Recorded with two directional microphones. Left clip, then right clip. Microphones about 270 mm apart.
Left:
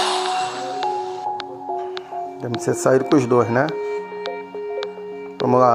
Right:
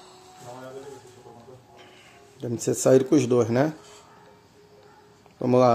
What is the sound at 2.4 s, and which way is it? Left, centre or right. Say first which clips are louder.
Speech: left 3 dB; centre.